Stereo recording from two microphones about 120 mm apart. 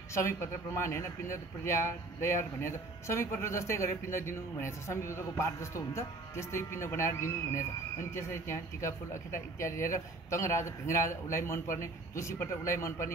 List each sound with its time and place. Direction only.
0.1 s speech: 25° left (ahead or behind)